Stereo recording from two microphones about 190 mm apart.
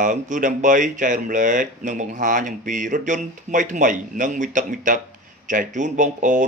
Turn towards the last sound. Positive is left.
turn(degrees=-40)  # may be behind; listen again after turning